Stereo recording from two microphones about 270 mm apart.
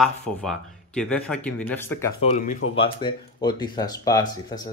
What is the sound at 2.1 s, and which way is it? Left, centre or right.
Speech, left.